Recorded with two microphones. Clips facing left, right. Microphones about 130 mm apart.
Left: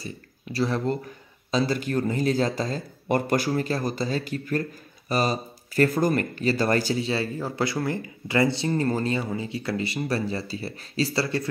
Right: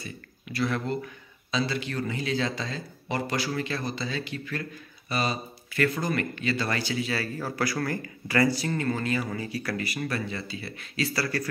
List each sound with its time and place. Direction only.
0.0 s speech: 35° left (ahead or behind)
7.1 s speech: 25° left (ahead or behind)